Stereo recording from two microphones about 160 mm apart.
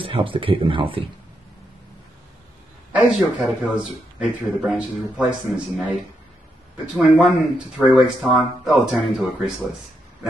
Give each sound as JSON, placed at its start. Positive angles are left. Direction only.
{"t": 0.0, "sound": "speech", "side_deg": -35}
{"t": 2.9, "sound": "speech", "side_deg": -5}
{"t": 6.9, "sound": "speech", "side_deg": -5}